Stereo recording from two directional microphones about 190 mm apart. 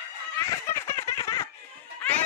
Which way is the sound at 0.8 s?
15° left (ahead or behind).